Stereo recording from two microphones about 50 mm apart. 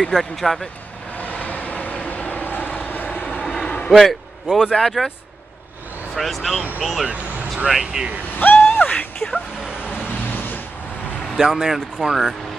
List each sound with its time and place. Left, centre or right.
0.1 s speech: centre
1.1 s vehicle: left
3.4 s vehicle: left
3.9 s a man's voice: centre
6.1 s speech: centre
8.4 s a sound: left
9.8 s vehicle: left
11.3 s speech: centre